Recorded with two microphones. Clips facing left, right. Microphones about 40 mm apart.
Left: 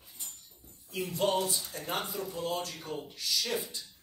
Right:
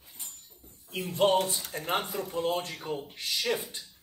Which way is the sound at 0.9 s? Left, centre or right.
Right.